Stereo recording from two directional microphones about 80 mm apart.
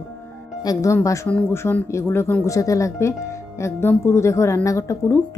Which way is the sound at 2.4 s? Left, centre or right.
Left.